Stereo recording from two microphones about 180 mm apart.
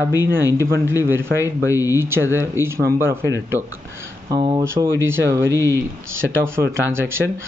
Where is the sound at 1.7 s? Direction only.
20° left (ahead or behind).